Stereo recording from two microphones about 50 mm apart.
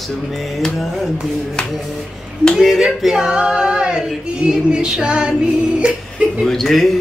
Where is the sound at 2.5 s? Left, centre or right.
Centre.